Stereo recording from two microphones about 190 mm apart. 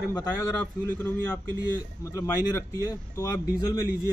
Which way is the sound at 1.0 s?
10° left (ahead or behind).